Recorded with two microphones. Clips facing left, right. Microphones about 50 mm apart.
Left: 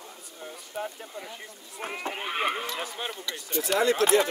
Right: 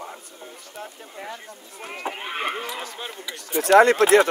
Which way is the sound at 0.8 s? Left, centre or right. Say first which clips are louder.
Left 4 dB; centre.